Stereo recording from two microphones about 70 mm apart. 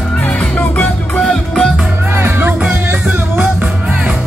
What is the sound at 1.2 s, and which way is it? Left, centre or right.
Music, centre.